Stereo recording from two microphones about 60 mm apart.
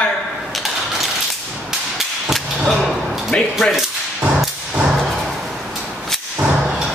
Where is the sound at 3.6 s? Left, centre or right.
Centre.